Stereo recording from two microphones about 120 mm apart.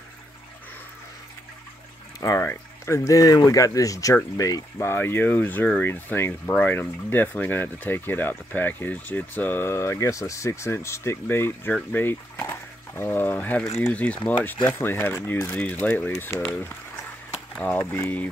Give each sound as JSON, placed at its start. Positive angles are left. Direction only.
{"t": 2.1, "sound": "speech", "side_deg": 25}